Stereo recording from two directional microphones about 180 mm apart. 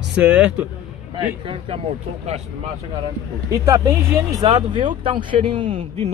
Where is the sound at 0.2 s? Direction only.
10° right (ahead or behind).